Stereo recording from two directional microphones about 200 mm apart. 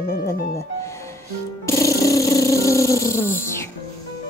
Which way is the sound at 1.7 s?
15° left (ahead or behind).